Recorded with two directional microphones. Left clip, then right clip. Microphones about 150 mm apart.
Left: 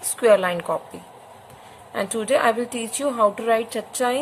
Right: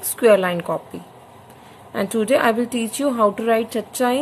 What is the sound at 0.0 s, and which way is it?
Speech, 15° right (ahead or behind).